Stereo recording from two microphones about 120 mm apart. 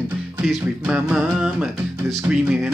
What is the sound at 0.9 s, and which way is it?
Music, 5° right (ahead or behind).